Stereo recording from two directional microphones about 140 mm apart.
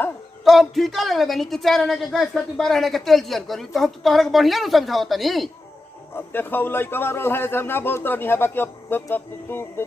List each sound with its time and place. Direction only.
0.5 s a woman's voice: centre (ahead or behind)
6.1 s a man's voice: 15° left (ahead or behind)